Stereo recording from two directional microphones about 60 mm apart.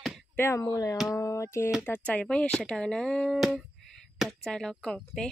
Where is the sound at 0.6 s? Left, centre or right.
Left.